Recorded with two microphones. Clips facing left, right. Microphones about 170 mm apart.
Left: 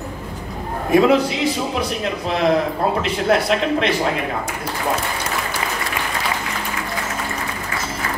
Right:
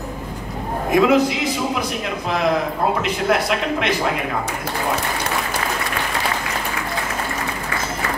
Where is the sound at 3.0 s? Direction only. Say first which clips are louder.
Left 1 dB; 30° left (ahead or behind).